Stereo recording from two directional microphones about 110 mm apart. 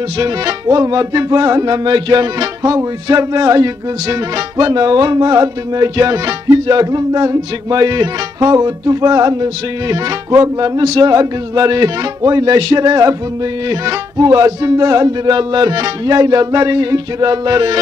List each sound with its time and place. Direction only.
0.2 s music: 35° right (ahead or behind)